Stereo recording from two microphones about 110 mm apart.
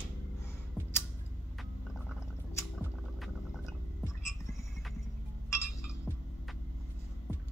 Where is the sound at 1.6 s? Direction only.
Centre (ahead or behind).